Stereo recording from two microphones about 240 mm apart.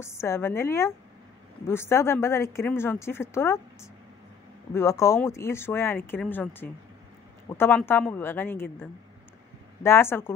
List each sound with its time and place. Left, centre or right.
0.0 s a woman's voice: centre
9.8 s a woman's voice: centre